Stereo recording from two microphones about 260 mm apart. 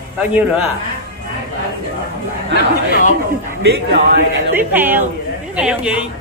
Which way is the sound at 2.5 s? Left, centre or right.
Left.